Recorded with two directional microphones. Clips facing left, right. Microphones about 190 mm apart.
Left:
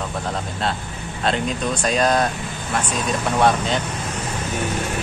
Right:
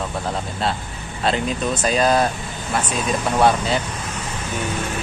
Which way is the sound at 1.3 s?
Centre (ahead or behind).